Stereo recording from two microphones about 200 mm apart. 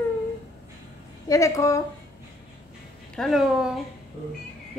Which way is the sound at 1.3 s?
15° left (ahead or behind).